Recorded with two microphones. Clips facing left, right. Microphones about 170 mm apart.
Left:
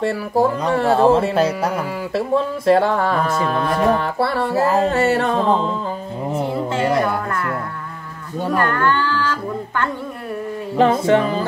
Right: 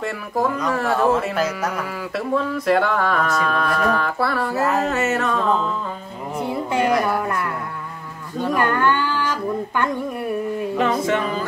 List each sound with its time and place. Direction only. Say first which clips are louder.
0.0 s speech: left 5 dB; 30° left (ahead or behind)
8.5 s speech: left 1 dB; 15° right (ahead or behind)
10.8 s singing: left 7 dB; 30° left (ahead or behind)